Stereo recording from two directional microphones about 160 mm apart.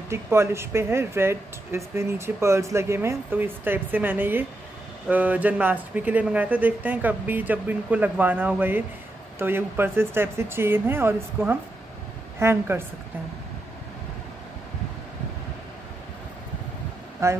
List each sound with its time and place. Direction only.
0.1 s speech: 15° right (ahead or behind)
17.2 s speech: 15° right (ahead or behind)